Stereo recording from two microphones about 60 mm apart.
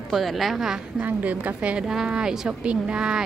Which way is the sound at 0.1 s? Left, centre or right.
Centre.